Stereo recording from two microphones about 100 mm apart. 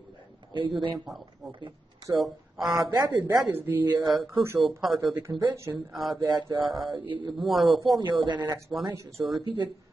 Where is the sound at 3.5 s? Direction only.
20° right (ahead or behind).